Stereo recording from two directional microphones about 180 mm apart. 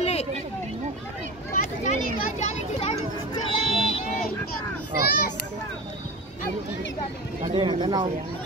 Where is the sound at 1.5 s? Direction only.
45° left (ahead or behind).